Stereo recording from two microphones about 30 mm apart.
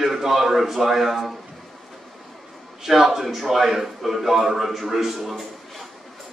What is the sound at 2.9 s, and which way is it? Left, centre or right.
A man's voice, centre.